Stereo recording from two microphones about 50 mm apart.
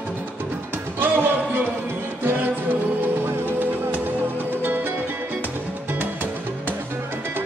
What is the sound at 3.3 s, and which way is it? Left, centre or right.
Music, right.